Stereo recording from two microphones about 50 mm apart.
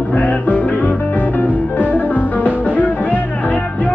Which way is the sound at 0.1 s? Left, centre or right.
Left.